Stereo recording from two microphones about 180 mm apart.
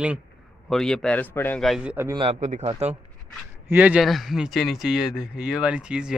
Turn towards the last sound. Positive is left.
turn(degrees=-5)  # may be behind; listen again after turning